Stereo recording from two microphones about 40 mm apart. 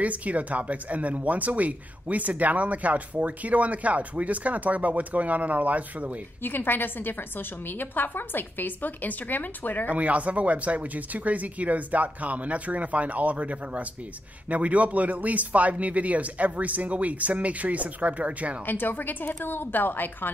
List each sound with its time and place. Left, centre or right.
0.0 s speech: right
6.4 s a woman's voice: left
9.8 s speech: right
18.7 s a woman's voice: left